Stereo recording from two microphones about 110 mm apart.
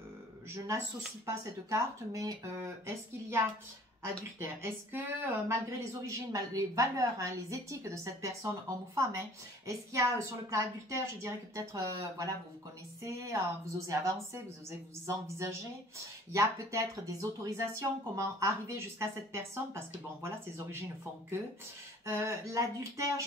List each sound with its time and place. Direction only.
0.6 s a woman's voice: 30° right (ahead or behind)
22.0 s a woman's voice: 25° right (ahead or behind)